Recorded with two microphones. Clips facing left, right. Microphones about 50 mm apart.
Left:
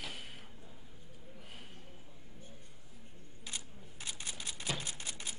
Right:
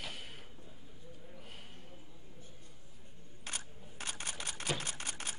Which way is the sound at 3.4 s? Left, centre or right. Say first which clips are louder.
Right 2 dB; right.